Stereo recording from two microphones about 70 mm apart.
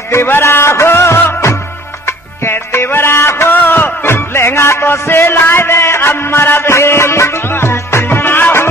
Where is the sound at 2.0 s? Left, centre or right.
Left.